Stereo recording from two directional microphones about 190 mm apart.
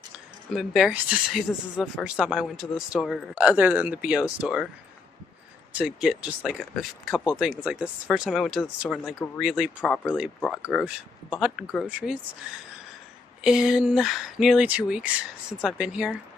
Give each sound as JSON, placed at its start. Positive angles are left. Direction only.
{"t": 0.5, "sound": "speech", "side_deg": 0}
{"t": 5.8, "sound": "speech", "side_deg": -5}
{"t": 10.0, "sound": "speech", "side_deg": -5}